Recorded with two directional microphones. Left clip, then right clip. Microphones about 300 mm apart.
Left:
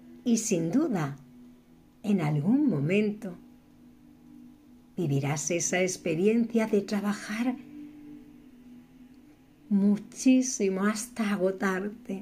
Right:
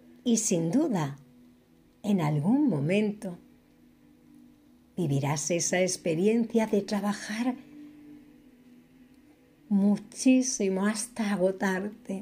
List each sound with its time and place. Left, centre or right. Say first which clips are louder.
0.2 s speech: right 1 dB; centre
4.9 s speech: even; centre
9.8 s speech: even; centre